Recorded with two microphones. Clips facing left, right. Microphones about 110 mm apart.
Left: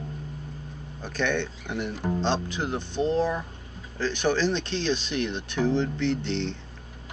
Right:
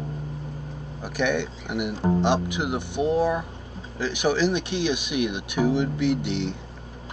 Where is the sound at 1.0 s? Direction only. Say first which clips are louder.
Right 2 dB; 10° right (ahead or behind).